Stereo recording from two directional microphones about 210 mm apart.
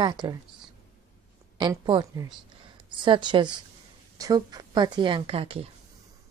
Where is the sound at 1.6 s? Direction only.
20° right (ahead or behind).